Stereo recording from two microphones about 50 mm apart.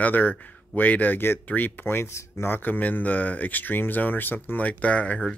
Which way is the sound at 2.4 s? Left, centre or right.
Left.